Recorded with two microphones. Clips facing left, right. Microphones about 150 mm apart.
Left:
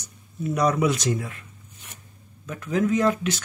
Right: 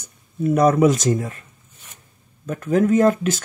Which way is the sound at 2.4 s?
50° right (ahead or behind).